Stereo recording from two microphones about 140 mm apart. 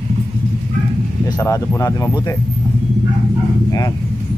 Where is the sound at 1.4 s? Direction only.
25° left (ahead or behind).